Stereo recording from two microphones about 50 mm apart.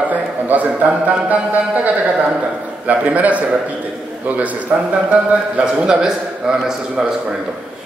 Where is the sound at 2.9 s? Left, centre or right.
Right.